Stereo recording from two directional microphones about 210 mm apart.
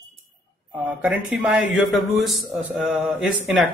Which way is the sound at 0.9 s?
5° right (ahead or behind).